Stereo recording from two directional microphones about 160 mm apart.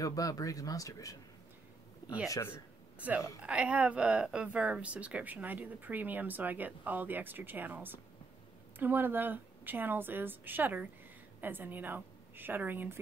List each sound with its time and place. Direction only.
0.0 s speech: 20° left (ahead or behind)
2.2 s speech: 20° left (ahead or behind)
3.0 s a woman's voice: 10° right (ahead or behind)